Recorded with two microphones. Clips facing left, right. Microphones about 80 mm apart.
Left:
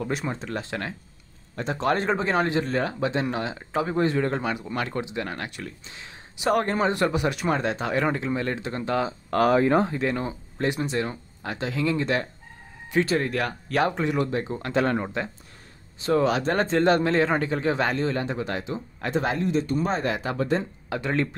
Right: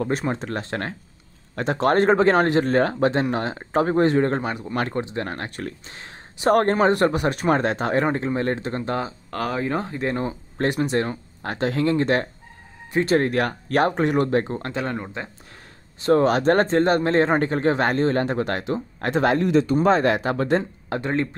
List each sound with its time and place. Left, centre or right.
0.0 s speech: right
1.5 s speech: right
8.0 s speech: right
9.3 s speech: left
9.9 s speech: right
10.6 s speech: right
16.0 s speech: right
16.7 s speech: right
20.2 s speech: right